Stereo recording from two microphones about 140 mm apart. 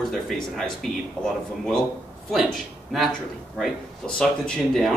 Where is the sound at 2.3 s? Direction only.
Centre (ahead or behind).